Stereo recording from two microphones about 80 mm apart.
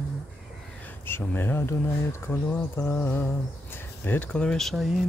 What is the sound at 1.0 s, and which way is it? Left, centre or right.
Speech, left.